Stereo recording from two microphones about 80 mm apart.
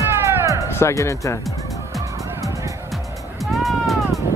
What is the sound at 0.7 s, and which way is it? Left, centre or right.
Speech, left.